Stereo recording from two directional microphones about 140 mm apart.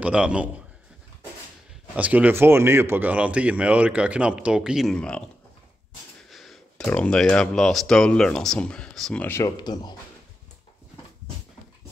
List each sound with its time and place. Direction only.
0.0 s speech: 10° right (ahead or behind)
2.0 s speech: 10° right (ahead or behind); by 5.2 s 5° left (ahead or behind)
6.3 s speech: centre (ahead or behind)
9.2 s speech: 20° left (ahead or behind)
9.6 s speech: 30° left (ahead or behind)